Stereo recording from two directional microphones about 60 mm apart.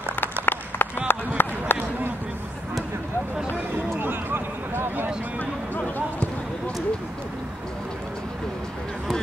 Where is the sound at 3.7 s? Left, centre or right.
Right.